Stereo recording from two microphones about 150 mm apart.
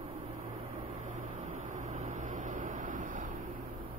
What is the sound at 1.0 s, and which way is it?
Vehicle, 55° right (ahead or behind).